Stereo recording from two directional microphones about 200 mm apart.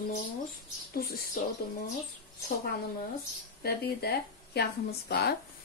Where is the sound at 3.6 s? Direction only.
50° left (ahead or behind).